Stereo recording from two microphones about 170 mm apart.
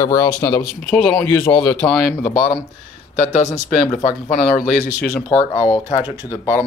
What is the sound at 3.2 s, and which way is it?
Speech, 45° left (ahead or behind).